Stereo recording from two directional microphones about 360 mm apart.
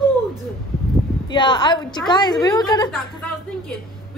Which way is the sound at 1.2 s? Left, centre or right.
Centre.